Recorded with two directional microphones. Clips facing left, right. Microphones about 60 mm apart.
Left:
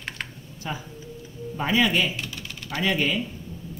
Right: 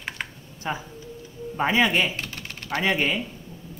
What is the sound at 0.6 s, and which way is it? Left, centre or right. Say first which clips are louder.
Speech: right 3 dB; right.